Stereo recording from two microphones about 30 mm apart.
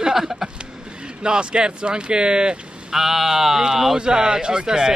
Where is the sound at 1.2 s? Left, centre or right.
Right.